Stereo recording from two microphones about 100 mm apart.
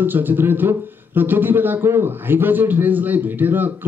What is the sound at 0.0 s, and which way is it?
Speech, 20° right (ahead or behind).